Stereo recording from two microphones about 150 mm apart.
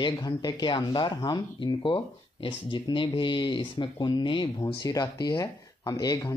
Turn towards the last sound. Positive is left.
turn(degrees=25)  # may be behind; listen again after turning